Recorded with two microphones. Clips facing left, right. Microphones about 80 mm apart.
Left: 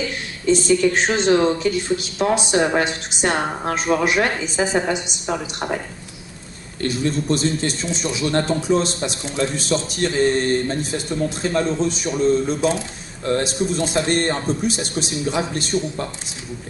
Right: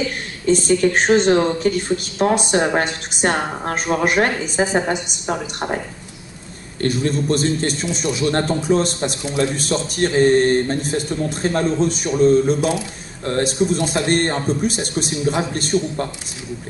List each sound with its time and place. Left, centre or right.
0.5 s a man's voice: right
6.8 s a man's voice: right